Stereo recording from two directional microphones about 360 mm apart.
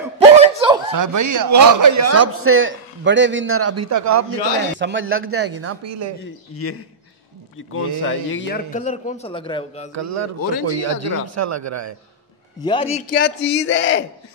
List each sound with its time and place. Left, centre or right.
0.4 s chuckle: centre
0.9 s a man's voice: right
4.7 s speech: right
6.5 s a man's voice: left; by 9.8 s centre
9.9 s a man's voice: right
12.5 s a man's voice: centre; by 14.0 s left